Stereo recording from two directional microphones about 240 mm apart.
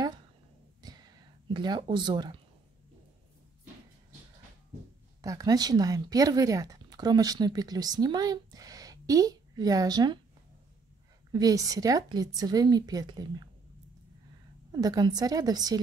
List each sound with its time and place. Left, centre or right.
0.8 s a sound: centre
1.5 s speech: centre
5.2 s speech: centre
11.3 s speech: centre
14.7 s speech: centre